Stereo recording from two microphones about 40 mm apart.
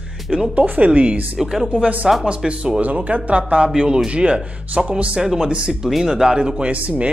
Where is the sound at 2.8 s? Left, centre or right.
Right.